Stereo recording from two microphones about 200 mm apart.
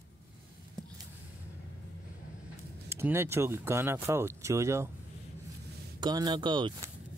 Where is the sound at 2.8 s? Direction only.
10° right (ahead or behind).